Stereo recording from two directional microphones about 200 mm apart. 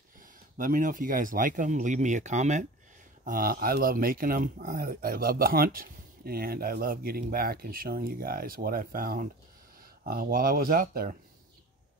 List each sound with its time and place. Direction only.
0.2 s speech: 45° right (ahead or behind)